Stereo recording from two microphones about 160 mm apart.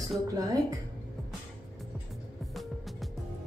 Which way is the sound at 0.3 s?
25° right (ahead or behind).